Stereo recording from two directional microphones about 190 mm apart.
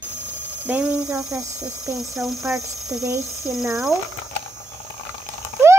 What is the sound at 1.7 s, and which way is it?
Speech, 15° left (ahead or behind).